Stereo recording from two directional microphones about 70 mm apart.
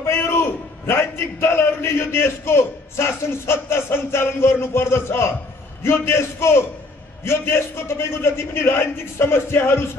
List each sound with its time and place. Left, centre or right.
0.0 s a man's voice: left